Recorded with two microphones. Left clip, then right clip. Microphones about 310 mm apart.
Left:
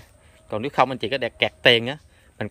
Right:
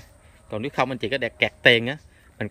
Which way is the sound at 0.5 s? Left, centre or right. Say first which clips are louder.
Left 4 dB; centre.